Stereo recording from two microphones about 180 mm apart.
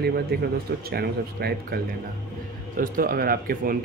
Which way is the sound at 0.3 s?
60° right (ahead or behind).